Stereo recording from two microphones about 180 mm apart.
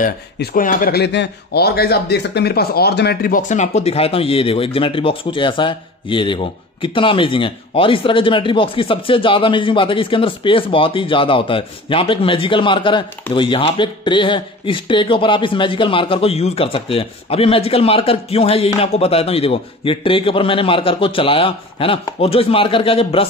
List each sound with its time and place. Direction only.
0.0 s speech: 55° left (ahead or behind); by 23.2 s 30° left (ahead or behind)